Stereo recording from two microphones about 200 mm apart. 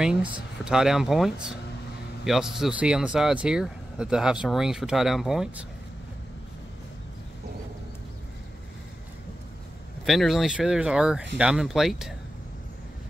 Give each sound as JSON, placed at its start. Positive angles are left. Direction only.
{"t": 0.0, "sound": "speech", "side_deg": -5}
{"t": 10.0, "sound": "speech", "side_deg": 0}